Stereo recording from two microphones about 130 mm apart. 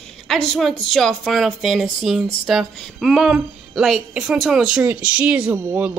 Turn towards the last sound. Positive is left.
turn(degrees=-15)  # may be behind; listen again after turning